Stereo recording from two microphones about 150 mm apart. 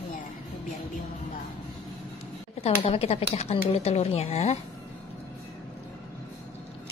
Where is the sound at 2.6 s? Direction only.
45° left (ahead or behind).